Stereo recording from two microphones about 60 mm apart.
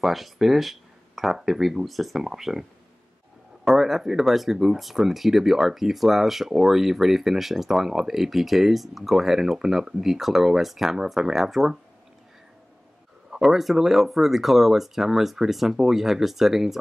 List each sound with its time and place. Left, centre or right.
0.0 s speech: centre
3.6 s speech: centre
13.3 s speech: centre